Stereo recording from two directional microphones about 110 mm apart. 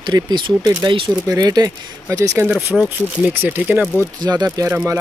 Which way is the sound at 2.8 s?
20° right (ahead or behind).